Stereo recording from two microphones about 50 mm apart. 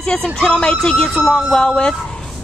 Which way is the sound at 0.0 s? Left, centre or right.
Centre.